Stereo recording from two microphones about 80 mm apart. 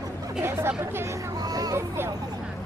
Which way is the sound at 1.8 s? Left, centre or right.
Right.